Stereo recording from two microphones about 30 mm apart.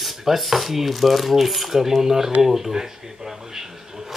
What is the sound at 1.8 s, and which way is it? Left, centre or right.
Speech, centre.